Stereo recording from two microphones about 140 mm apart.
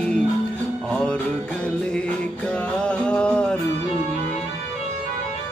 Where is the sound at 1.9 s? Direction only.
10° left (ahead or behind).